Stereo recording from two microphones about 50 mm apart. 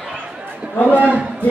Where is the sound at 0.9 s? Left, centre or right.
Right.